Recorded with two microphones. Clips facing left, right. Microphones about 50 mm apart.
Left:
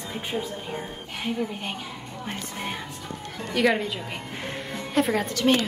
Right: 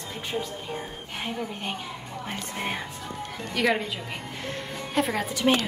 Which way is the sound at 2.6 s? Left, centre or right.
Centre.